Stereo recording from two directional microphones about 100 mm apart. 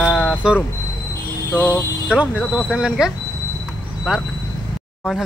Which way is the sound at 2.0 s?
10° right (ahead or behind).